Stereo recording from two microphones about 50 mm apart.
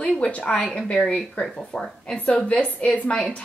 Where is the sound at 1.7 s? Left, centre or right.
Left.